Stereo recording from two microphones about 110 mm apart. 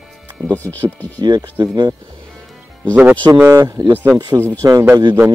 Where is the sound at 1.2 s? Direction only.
35° right (ahead or behind).